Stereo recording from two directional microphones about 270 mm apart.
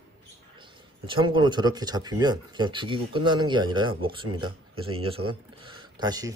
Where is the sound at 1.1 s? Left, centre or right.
Centre.